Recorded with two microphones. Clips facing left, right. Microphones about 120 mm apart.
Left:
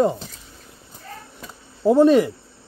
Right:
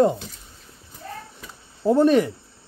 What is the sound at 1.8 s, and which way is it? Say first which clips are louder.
Speech: left 3 dB; 15° left (ahead or behind).